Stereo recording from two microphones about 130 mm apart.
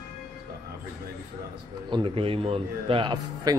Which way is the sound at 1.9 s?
45° right (ahead or behind).